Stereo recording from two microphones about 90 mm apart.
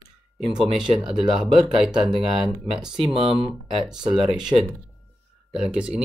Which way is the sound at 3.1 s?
90° right.